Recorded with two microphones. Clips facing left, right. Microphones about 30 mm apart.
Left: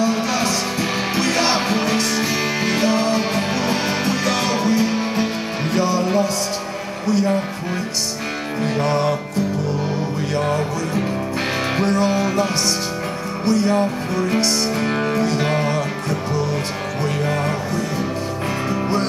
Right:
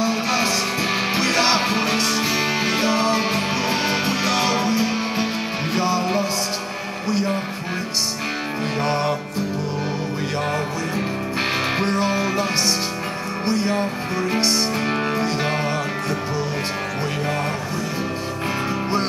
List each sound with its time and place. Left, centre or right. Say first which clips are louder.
0.0 s music: left 1 dB; right
11.8 s music: left 2 dB; right
13.5 s speech: left 5 dB; centre
14.8 s music: left 2 dB; centre